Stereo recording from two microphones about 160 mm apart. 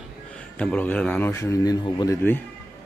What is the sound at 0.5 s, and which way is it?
A man's voice, 10° left (ahead or behind).